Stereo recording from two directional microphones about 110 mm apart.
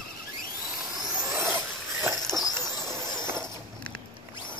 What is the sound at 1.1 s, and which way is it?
Vehicle, 25° right (ahead or behind).